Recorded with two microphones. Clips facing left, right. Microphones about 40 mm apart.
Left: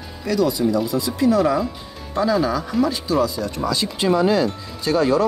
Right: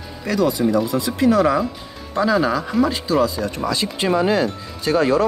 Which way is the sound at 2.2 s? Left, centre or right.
Right.